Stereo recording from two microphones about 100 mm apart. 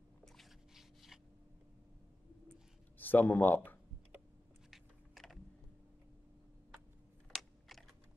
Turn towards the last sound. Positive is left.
turn(degrees=0)  # may be behind; listen again after turning